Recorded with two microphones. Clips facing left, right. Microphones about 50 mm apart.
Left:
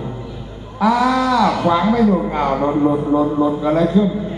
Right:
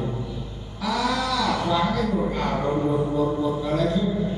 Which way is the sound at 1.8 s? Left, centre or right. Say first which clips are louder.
Left 8 dB; left.